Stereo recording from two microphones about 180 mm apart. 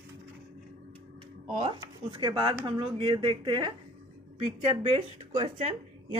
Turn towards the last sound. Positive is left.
turn(degrees=-35)  # may be behind; listen again after turning